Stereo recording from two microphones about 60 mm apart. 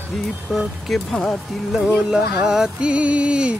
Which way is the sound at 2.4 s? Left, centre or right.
Centre.